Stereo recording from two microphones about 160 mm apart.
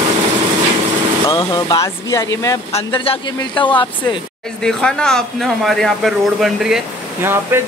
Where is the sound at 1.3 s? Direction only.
25° left (ahead or behind).